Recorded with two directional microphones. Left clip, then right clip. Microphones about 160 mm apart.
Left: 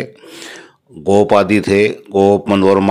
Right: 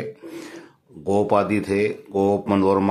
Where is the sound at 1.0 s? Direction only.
30° left (ahead or behind).